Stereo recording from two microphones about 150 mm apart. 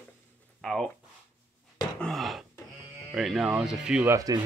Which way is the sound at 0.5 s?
Centre (ahead or behind).